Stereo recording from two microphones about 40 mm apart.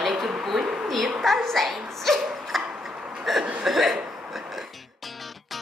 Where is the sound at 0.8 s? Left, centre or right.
Centre.